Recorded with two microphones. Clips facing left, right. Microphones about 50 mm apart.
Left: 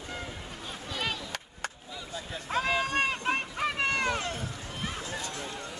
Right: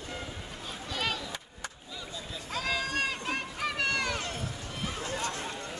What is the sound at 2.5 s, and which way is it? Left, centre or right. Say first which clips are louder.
Run: left 4 dB; left.